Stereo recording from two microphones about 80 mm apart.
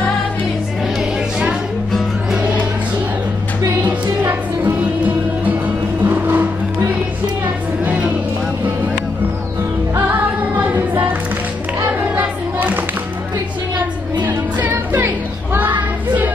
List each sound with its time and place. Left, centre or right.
2.3 s music: centre
4.2 s music: right
6.0 s music: right
11.8 s a sound: right
14.2 s music: right